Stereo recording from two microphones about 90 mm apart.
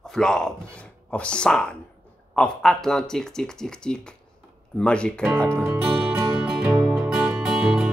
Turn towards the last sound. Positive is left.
turn(degrees=-10)  # may be behind; listen again after turning